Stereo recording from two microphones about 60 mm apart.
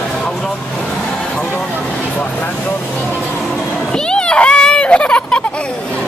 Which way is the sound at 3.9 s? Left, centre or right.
Centre.